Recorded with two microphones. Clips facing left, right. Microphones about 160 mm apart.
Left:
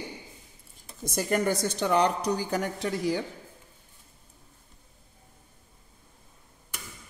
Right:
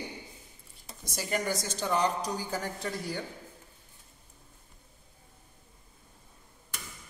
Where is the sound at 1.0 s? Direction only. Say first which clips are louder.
Left 6 dB; 55° left (ahead or behind); by 3.2 s 90° left.